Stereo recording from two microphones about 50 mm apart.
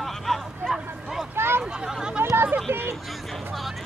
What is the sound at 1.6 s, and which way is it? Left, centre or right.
Speech, centre.